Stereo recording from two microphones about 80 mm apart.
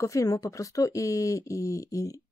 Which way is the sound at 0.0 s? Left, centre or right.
Left.